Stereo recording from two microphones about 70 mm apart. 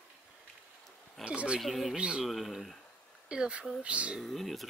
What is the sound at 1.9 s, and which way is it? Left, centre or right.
Speech, centre.